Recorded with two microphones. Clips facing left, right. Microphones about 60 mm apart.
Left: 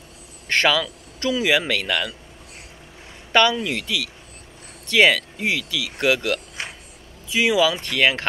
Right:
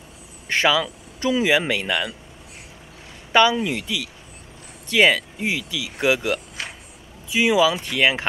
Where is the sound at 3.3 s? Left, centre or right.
Centre.